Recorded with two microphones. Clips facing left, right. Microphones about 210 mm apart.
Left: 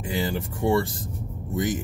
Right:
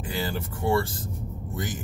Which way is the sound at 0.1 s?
20° left (ahead or behind).